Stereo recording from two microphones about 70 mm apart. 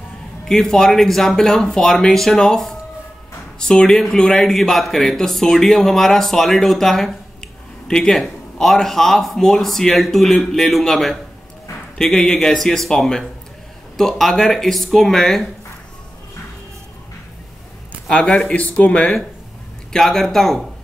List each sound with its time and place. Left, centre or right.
0.5 s speech: centre
18.1 s speech: centre
19.9 s speech: centre